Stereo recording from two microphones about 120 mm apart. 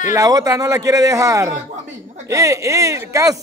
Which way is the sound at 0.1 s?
30° right (ahead or behind).